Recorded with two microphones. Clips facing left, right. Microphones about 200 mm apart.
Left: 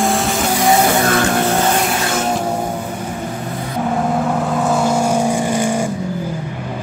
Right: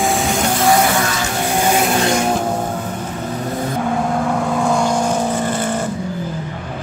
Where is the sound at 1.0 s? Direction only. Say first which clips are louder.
Left 6 dB; 55° left (ahead or behind).